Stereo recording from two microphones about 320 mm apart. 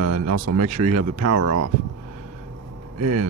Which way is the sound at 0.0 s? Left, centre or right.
Right.